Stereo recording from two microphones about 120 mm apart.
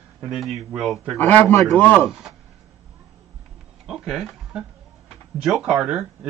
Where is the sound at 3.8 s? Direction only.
5° right (ahead or behind).